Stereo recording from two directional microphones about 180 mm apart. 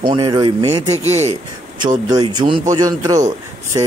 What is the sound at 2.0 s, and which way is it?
Speech, 20° right (ahead or behind).